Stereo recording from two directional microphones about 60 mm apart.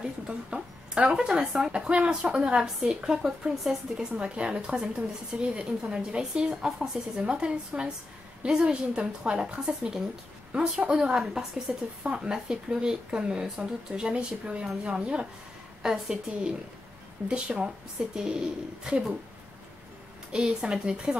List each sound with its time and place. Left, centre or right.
0.3 s speech: centre
1.7 s speech: centre
20.3 s speech: centre